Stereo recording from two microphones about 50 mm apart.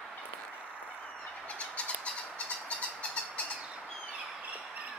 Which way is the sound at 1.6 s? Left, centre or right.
Left.